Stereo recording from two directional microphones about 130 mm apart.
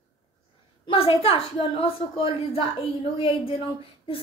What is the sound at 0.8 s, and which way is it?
A child's voice, 45° left (ahead or behind).